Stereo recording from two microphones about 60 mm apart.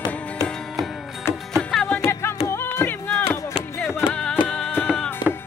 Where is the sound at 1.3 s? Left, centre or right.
Left.